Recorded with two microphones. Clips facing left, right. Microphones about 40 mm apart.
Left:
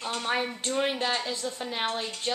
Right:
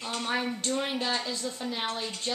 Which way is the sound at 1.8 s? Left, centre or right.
Centre.